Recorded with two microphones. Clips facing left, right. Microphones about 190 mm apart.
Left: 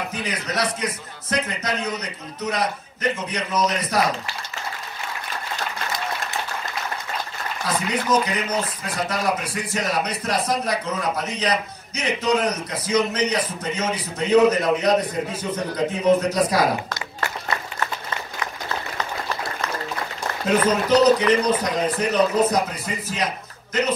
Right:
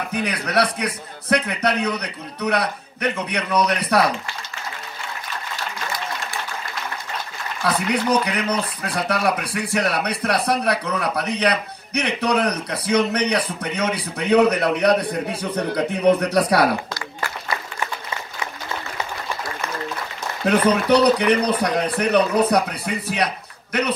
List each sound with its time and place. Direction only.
0.1 s a man's voice: 65° right (ahead or behind)
7.6 s a man's voice: 65° right (ahead or behind)
20.4 s a man's voice: 65° right (ahead or behind)